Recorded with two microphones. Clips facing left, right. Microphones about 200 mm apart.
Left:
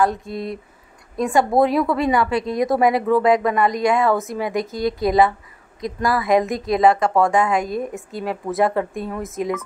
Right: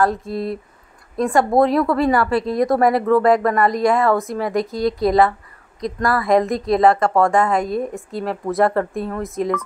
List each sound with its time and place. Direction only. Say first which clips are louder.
0.0 s a woman's voice: right 1 dB; centre (ahead or behind)